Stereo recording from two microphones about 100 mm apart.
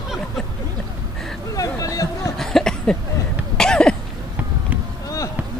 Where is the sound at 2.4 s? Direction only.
5° left (ahead or behind).